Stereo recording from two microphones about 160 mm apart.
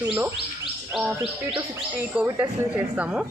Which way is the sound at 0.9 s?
5° right (ahead or behind).